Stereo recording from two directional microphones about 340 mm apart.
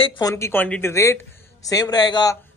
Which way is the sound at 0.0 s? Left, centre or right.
Centre.